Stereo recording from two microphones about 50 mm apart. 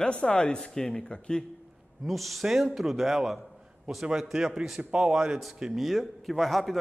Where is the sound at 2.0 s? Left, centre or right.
Centre.